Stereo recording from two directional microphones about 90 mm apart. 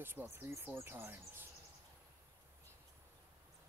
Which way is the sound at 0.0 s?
25° right (ahead or behind).